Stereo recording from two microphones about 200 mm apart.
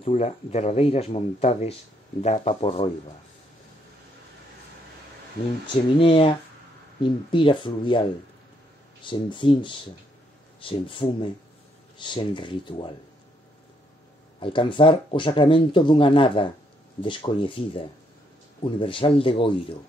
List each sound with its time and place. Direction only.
0.0 s speech: 35° left (ahead or behind)
5.7 s speech: 25° left (ahead or behind)
14.4 s speech: 25° left (ahead or behind)